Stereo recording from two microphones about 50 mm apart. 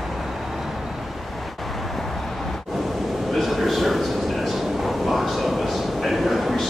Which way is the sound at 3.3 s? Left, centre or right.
Centre.